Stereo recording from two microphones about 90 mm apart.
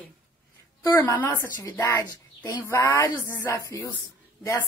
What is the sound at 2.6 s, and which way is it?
A woman's voice, 30° left (ahead or behind).